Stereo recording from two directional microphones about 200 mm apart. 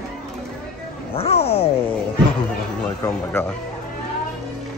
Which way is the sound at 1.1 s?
30° left (ahead or behind).